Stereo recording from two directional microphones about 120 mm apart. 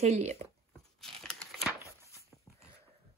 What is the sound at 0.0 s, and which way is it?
Speech, 65° right (ahead or behind).